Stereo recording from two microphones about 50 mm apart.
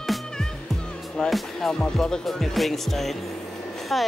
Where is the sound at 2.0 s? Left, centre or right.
Centre.